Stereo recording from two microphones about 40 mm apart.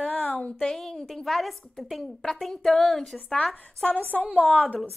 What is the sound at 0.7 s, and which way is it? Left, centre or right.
A woman's voice, centre.